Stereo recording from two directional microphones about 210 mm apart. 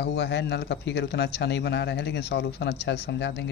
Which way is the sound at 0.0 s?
55° left (ahead or behind).